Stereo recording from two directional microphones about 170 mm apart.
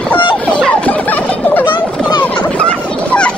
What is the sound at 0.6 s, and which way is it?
Turkey, 5° left (ahead or behind).